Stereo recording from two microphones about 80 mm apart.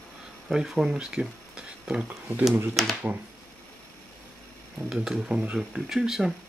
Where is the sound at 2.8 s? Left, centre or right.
Centre.